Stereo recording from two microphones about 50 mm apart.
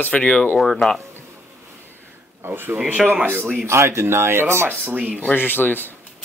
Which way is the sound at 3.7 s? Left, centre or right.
Right.